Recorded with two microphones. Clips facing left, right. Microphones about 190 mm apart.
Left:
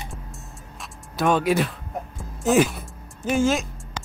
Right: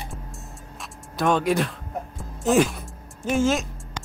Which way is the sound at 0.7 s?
Centre (ahead or behind).